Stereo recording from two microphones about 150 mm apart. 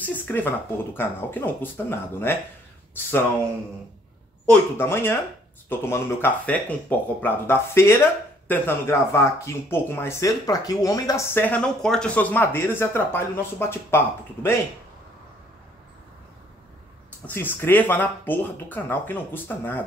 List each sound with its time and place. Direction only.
0.0 s a sound: 10° left (ahead or behind)
0.9 s speech: 15° left (ahead or behind)
4.5 s speech: 15° left (ahead or behind)
17.3 s speech: 15° left (ahead or behind)